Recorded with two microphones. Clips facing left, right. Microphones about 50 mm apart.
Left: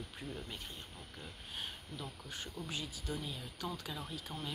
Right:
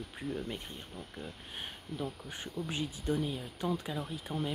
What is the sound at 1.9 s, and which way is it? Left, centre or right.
Speech, centre.